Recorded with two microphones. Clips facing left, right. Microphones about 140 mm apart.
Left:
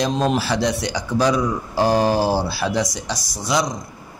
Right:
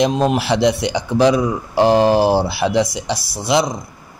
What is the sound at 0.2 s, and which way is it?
Speech, 15° right (ahead or behind).